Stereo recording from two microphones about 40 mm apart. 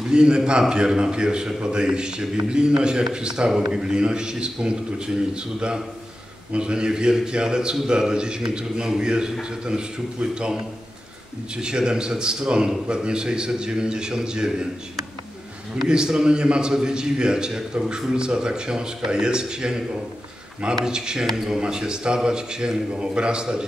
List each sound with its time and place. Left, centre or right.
0.1 s a man's voice: centre
15.9 s a man's voice: centre
20.8 s a man's voice: centre